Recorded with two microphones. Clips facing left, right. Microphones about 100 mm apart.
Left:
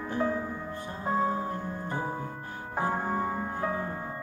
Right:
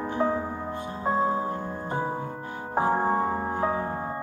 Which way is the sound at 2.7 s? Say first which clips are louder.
Right 6 dB; 35° right (ahead or behind).